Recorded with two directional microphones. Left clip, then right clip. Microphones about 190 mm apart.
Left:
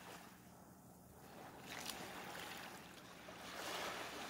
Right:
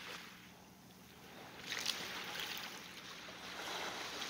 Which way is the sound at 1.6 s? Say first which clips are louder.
Right 9 dB; 45° left (ahead or behind).